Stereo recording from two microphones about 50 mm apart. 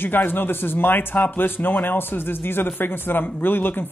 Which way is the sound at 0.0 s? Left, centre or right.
Left.